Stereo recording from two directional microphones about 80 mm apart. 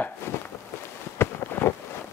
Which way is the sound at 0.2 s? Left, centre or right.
Left.